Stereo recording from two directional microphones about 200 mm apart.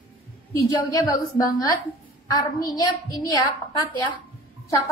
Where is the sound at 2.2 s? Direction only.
20° left (ahead or behind).